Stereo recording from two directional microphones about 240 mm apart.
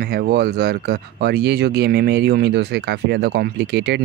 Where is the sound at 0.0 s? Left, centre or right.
Right.